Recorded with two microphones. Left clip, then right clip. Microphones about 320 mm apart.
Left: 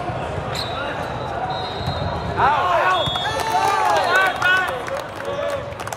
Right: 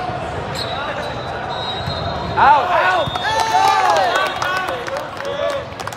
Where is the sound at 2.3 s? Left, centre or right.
Right.